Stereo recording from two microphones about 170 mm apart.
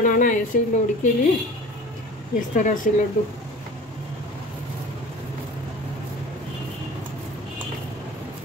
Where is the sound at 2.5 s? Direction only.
50° left (ahead or behind).